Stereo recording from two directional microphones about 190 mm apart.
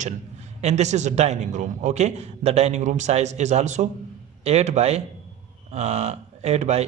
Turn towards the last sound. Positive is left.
turn(degrees=-35)  # may be behind; listen again after turning